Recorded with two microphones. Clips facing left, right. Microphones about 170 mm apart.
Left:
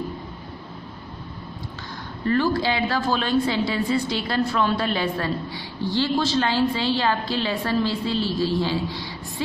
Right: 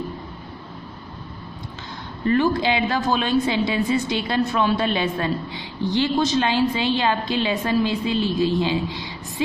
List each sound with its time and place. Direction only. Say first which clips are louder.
2.2 s a woman's voice: right 2 dB; 20° right (ahead or behind)